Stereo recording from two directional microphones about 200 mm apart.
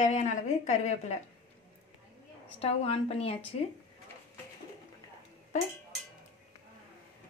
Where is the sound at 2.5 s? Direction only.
30° left (ahead or behind).